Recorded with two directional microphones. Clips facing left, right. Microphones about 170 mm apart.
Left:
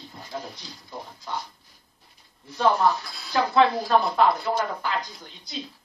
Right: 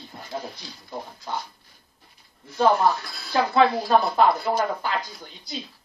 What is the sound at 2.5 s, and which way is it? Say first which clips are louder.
Speech: right 2 dB; 5° right (ahead or behind).